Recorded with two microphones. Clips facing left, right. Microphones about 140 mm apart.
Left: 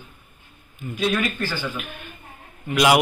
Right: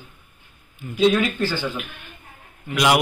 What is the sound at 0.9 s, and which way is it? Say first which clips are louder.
Speech: right 5 dB; 15° right (ahead or behind).